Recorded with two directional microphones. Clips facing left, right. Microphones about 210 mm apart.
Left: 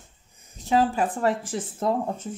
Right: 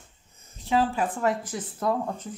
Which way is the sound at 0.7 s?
35° left (ahead or behind).